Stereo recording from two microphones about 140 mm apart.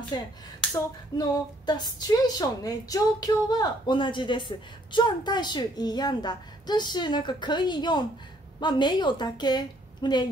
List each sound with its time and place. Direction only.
0.1 s a woman's voice: 30° left (ahead or behind)